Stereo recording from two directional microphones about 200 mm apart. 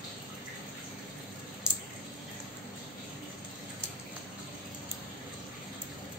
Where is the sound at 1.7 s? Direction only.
5° right (ahead or behind).